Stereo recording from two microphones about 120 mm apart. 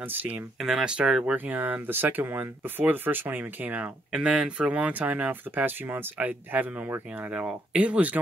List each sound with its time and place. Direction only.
0.1 s speech: 15° right (ahead or behind)
0.6 s speech: 5° right (ahead or behind)